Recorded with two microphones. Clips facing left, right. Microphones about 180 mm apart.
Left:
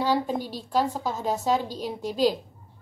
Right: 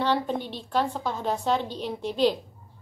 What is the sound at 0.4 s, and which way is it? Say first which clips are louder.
Speech: left 2 dB; 40° left (ahead or behind).